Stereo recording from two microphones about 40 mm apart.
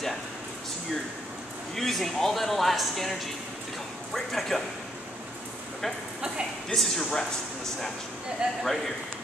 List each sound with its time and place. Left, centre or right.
1.8 s speech: centre
6.7 s speech: centre
8.4 s a man's voice: right